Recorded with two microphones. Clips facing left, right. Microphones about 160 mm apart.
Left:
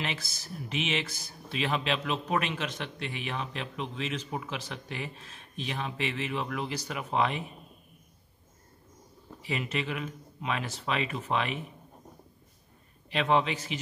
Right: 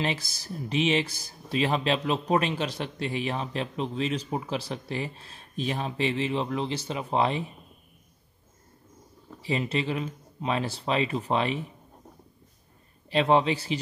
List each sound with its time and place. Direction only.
0.0 s speech: 35° right (ahead or behind)
9.4 s speech: 30° right (ahead or behind)
13.1 s speech: 35° right (ahead or behind)